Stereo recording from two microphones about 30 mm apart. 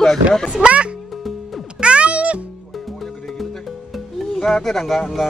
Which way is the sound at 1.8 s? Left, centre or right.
Right.